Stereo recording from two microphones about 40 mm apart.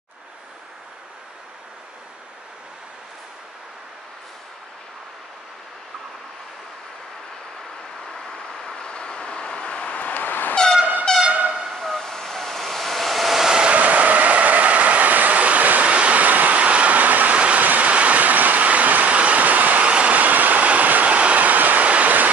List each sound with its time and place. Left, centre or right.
8.1 s vehicle: centre; by 10.2 s left
10.2 s vehicle: left
10.5 s vehicle: centre
11.2 s train: right
11.7 s vehicle: centre
13.6 s vehicle: right
17.4 s vehicle: right
19.1 s train: right
19.9 s vehicle: right
20.2 s train: right